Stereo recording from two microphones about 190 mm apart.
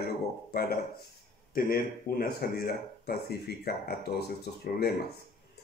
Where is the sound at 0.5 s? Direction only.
55° left (ahead or behind).